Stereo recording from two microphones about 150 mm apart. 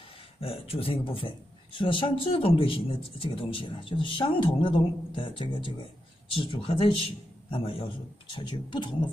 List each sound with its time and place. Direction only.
0.4 s a man's voice: 40° left (ahead or behind)